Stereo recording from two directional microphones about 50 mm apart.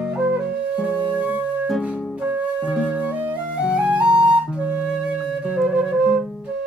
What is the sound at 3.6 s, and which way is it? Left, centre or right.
Flute, right.